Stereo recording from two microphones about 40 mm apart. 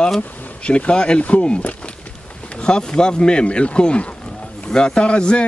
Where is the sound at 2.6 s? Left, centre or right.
Left.